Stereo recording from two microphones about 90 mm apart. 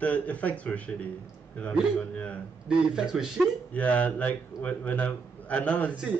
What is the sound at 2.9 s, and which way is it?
Speech, 10° right (ahead or behind).